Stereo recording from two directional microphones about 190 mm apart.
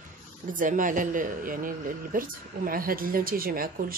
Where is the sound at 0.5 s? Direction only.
45° right (ahead or behind).